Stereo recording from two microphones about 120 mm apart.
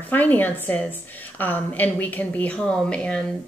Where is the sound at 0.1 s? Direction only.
15° left (ahead or behind).